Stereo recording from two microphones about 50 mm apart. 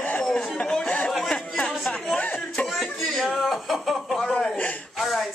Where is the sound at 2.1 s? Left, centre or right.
Left.